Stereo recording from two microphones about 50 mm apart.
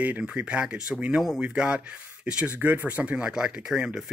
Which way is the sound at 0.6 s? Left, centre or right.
Centre.